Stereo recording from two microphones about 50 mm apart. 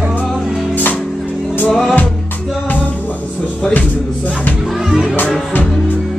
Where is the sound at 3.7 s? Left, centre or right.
Left.